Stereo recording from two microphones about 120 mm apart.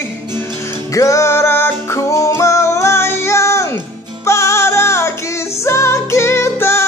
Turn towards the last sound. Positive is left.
turn(degrees=20)  # may be behind; listen again after turning